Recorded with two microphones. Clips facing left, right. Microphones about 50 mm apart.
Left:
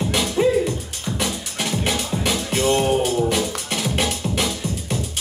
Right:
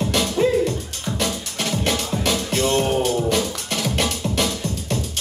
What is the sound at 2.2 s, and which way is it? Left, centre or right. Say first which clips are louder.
Music: left 1 dB; centre.